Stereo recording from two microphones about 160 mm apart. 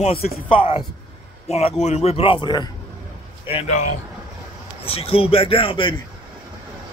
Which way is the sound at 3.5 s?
40° left (ahead or behind).